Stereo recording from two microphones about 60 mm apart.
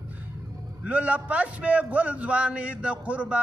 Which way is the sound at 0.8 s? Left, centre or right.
Right.